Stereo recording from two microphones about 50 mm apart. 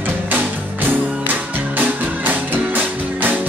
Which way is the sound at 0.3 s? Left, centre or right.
Right.